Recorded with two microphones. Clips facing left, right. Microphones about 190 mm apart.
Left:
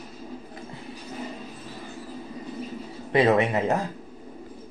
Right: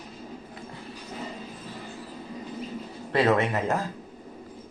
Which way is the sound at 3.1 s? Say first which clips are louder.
Left 2 dB; 20° left (ahead or behind).